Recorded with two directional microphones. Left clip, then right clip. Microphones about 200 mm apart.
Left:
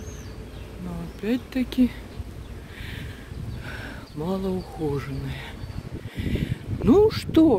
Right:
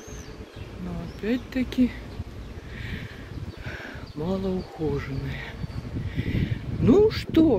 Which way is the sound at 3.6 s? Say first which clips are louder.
Even; 10° left (ahead or behind).